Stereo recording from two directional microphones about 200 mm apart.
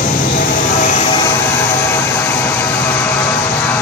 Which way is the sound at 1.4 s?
10° left (ahead or behind).